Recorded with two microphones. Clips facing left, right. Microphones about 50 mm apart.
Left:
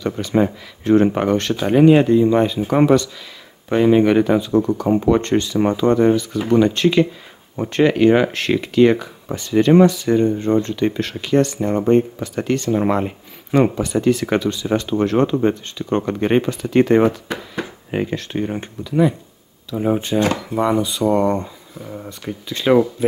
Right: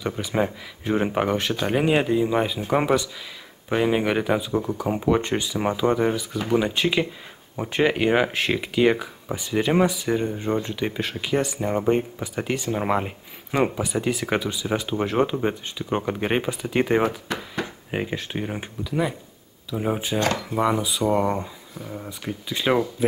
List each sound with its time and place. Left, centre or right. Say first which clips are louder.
0.0 s speech: left 6 dB; centre
17.4 s a sound: left 2 dB; centre
18.1 s speech: left 6 dB; centre
22.5 s speech: left 6 dB; centre